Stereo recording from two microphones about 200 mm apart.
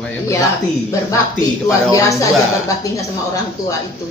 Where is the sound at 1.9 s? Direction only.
15° left (ahead or behind).